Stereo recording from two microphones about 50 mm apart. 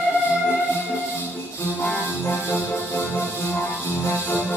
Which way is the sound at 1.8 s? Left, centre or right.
Left.